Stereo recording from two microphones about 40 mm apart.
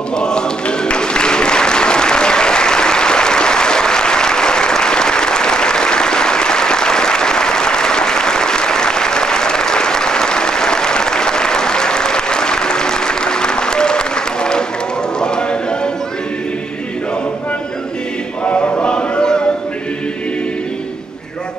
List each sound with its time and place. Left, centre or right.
0.2 s applause: left
15.1 s run: centre
18.4 s a sound: left